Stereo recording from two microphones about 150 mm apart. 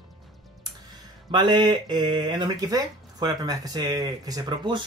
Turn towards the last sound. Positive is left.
turn(degrees=-30)  # may be behind; listen again after turning